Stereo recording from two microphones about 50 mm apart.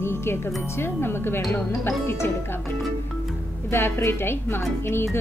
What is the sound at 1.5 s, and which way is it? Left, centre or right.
Music, left.